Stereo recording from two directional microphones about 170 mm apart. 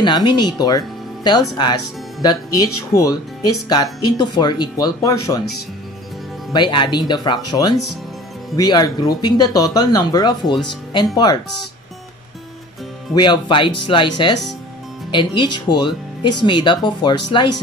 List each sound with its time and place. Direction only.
0.0 s speech: 25° left (ahead or behind)
6.5 s speech: 25° left (ahead or behind)
13.1 s speech: 25° left (ahead or behind)